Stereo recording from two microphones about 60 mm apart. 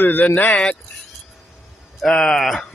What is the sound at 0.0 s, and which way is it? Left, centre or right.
Speech, left.